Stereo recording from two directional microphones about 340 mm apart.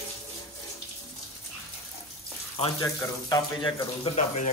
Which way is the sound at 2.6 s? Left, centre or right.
Centre.